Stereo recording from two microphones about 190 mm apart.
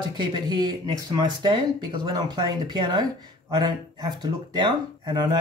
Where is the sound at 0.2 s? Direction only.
25° right (ahead or behind).